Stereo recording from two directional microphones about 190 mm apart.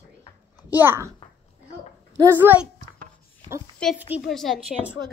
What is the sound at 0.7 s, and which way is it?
Speech, 10° right (ahead or behind).